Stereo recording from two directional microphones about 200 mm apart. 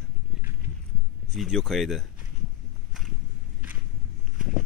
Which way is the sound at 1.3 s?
Centre (ahead or behind).